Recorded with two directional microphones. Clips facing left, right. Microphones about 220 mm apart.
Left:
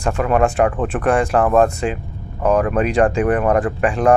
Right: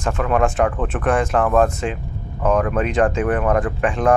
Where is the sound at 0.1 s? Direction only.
5° left (ahead or behind).